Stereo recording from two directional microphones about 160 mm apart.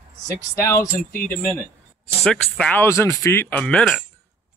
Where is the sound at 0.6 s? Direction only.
20° left (ahead or behind).